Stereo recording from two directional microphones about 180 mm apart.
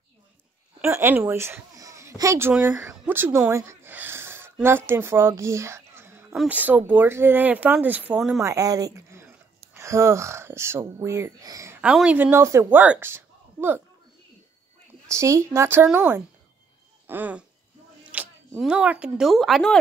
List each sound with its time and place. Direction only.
0.7 s a child's voice: 15° right (ahead or behind)
8.4 s speech: 20° right (ahead or behind)
15.0 s speech: 15° right (ahead or behind)
17.1 s speech: 10° right (ahead or behind)